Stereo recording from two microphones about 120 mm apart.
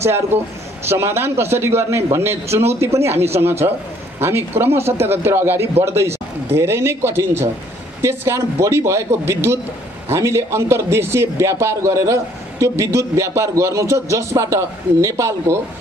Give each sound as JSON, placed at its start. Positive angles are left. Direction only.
{"t": 0.0, "sound": "a man's voice", "side_deg": -20}
{"t": 3.6, "sound": "a man's voice", "side_deg": -35}
{"t": 4.2, "sound": "a man's voice", "side_deg": -20}